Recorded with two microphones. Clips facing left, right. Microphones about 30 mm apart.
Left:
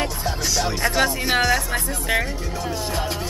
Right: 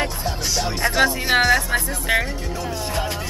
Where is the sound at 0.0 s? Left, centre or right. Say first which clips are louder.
Even; centre.